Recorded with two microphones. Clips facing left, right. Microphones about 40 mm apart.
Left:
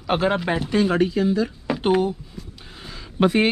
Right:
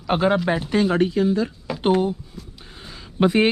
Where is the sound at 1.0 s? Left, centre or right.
Left.